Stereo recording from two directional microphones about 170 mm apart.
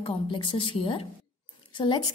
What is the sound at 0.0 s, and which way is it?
A woman's voice, 30° left (ahead or behind).